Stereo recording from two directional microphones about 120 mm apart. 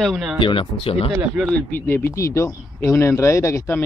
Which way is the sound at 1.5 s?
15° left (ahead or behind).